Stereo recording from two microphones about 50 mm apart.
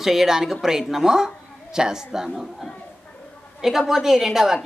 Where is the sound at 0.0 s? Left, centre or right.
Centre.